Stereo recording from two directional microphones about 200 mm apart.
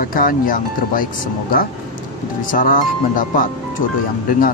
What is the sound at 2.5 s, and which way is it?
Speech, 40° left (ahead or behind).